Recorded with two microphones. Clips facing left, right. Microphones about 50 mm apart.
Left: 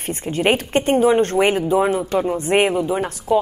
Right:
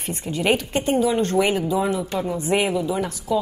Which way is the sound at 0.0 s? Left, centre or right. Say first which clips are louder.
Left 4 dB; left.